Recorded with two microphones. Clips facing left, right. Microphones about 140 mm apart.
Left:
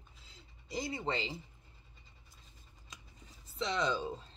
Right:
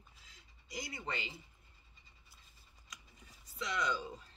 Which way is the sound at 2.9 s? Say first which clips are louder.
Left 1 dB; 30° left (ahead or behind).